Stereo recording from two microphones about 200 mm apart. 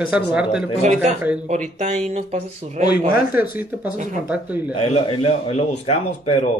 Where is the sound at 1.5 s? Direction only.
35° right (ahead or behind).